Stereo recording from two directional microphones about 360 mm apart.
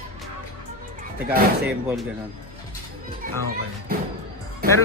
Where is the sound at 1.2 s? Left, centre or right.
Right.